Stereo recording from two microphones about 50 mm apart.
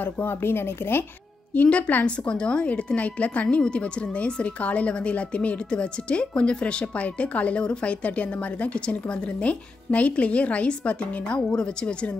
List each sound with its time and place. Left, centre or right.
0.0 s speech: left
1.5 s a woman's voice: left
2.0 s a woman's voice: centre
9.4 s a woman's voice: left